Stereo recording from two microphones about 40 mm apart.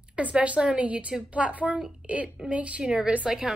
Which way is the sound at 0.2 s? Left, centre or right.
Right.